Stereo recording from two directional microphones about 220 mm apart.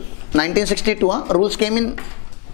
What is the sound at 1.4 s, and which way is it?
Speech, 10° left (ahead or behind).